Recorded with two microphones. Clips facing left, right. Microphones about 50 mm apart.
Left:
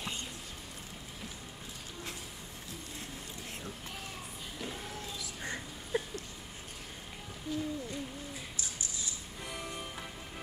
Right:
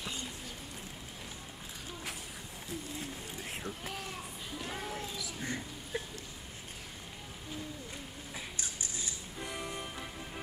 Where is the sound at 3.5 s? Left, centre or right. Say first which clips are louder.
Right 5 dB; centre.